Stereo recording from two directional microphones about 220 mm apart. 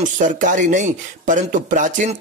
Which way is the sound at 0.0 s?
35° right (ahead or behind).